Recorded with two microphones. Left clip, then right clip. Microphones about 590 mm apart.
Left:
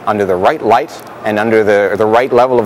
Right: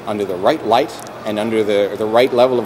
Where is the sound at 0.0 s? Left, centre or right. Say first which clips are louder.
Left 6 dB; left.